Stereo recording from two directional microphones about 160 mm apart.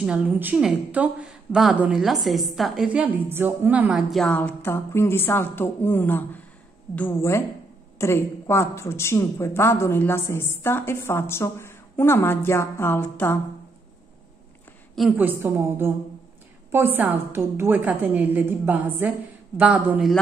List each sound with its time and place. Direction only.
0.0 s a woman's voice: 5° right (ahead or behind)
4.2 s speech: 10° left (ahead or behind)
15.0 s a woman's voice: 10° right (ahead or behind)